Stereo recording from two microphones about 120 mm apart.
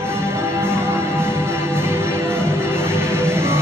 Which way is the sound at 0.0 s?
20° right (ahead or behind).